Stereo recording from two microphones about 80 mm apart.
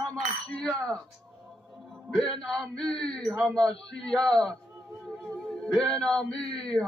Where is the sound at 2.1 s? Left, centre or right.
Centre.